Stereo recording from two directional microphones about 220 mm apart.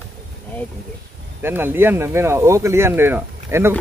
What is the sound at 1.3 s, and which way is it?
Speech, 10° right (ahead or behind).